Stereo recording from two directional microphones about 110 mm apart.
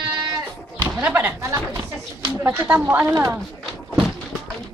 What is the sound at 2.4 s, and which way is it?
Speech, 20° right (ahead or behind).